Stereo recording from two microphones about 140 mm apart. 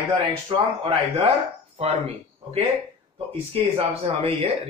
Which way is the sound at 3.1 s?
40° right (ahead or behind).